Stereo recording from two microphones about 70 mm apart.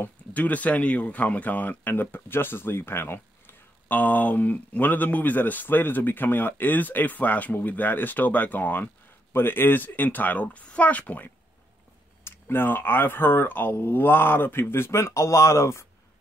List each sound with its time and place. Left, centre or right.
0.0 s speech: left
12.3 s speech: left